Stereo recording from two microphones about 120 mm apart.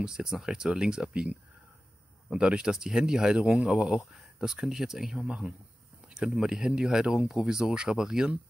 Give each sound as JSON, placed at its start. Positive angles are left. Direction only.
{"t": 0.0, "sound": "speech", "side_deg": -5}